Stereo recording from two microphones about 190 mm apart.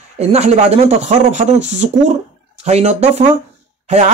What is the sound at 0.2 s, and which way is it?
Speech, 35° right (ahead or behind).